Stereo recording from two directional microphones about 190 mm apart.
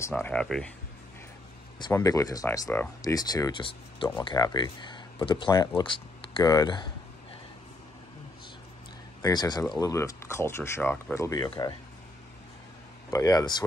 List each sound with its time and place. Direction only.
0.0 s speech: 10° left (ahead or behind)
1.8 s speech: 15° left (ahead or behind)
9.2 s speech: 20° left (ahead or behind)
13.1 s speech: 20° left (ahead or behind)